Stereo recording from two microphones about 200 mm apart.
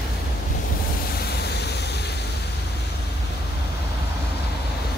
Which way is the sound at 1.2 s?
55° left (ahead or behind).